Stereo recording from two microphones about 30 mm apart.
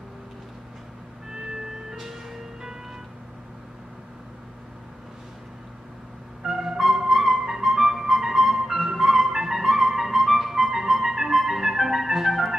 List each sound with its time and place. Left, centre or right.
1.9 s music: centre
6.4 s music: centre